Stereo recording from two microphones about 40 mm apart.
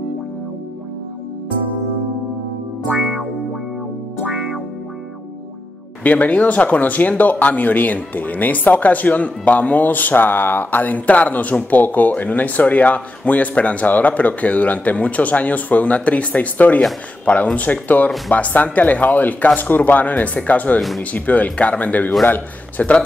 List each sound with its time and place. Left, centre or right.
2.9 s music: centre
6.0 s speech: left
22.2 s speech: left